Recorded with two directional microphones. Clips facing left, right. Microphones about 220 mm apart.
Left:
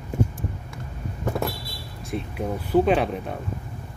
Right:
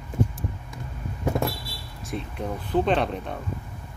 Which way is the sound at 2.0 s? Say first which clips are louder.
Left 2 dB; 5° left (ahead or behind).